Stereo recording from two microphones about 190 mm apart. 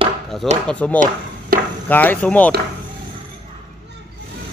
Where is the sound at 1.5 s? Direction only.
50° right (ahead or behind).